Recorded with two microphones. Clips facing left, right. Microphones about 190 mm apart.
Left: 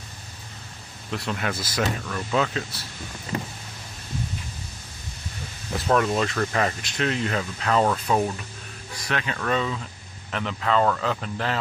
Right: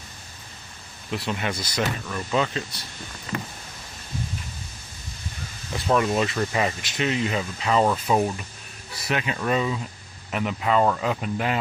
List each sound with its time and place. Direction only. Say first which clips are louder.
1.1 s speech: right 1 dB; centre (ahead or behind)
3.3 s power windows: left 1 dB; 30° left (ahead or behind)
5.9 s speech: even; 5° right (ahead or behind)